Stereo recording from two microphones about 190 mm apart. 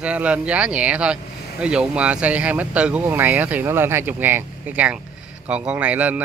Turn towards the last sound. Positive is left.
turn(degrees=-10)  # may be behind; listen again after turning